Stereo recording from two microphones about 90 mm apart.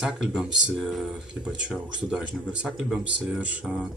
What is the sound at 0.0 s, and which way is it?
Speech, 5° right (ahead or behind).